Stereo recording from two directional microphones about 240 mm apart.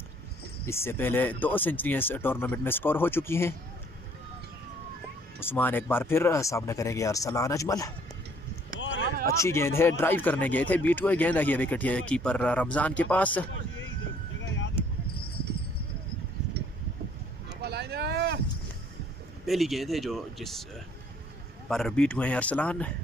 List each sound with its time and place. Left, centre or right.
0.7 s speech: centre
5.4 s speech: centre
8.7 s a sound: left
9.2 s speech: centre
15.1 s horse: left
17.6 s a sound: right
19.4 s speech: centre
21.6 s speech: centre